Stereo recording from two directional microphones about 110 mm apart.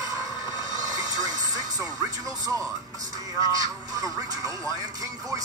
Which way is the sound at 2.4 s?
30° right (ahead or behind).